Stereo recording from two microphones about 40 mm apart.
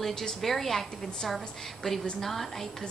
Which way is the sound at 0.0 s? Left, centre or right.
Centre.